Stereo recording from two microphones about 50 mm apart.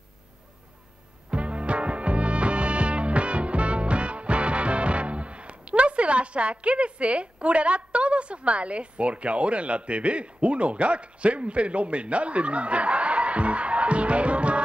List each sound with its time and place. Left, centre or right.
1.3 s music: right